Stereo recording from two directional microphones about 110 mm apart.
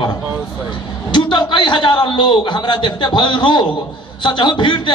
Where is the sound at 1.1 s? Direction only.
45° left (ahead or behind).